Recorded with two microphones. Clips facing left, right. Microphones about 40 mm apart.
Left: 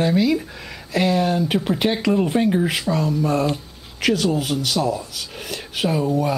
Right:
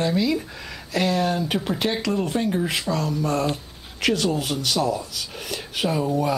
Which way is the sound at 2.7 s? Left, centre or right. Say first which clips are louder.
Left 3 dB; centre.